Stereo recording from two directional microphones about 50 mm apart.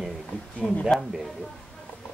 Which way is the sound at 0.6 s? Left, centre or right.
Left.